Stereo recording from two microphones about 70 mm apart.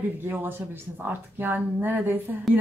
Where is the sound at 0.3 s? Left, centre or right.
Right.